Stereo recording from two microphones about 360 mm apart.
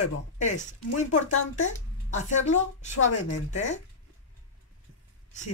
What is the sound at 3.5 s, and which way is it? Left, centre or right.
Speech, centre.